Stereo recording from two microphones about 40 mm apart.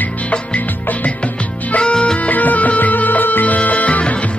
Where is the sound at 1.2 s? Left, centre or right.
Left.